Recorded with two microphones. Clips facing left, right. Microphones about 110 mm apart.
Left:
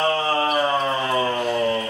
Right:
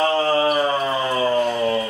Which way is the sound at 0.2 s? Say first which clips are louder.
Right 3 dB; centre (ahead or behind).